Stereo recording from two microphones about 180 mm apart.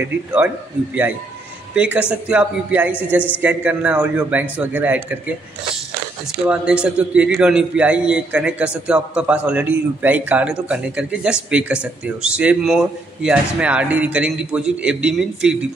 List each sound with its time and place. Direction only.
0.0 s a man's voice: 10° right (ahead or behind)
1.8 s a man's voice: 5° right (ahead or behind)
6.4 s a man's voice: 5° right (ahead or behind)